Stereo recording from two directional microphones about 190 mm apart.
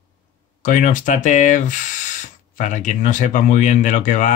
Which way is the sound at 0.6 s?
40° left (ahead or behind).